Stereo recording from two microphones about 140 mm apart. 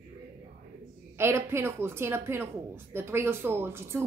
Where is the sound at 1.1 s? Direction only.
20° right (ahead or behind).